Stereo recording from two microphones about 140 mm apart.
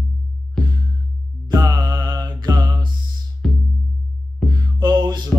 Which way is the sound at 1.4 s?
30° right (ahead or behind).